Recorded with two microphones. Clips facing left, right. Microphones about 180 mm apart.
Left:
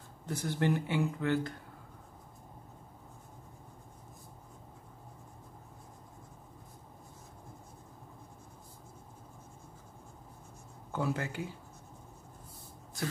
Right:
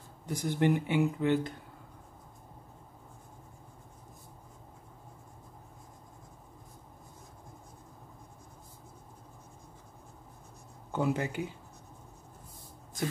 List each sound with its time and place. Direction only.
0.3 s speech: 15° right (ahead or behind)
10.9 s speech: 20° right (ahead or behind)